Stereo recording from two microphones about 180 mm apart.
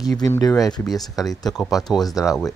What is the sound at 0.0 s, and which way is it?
Speech, 20° left (ahead or behind).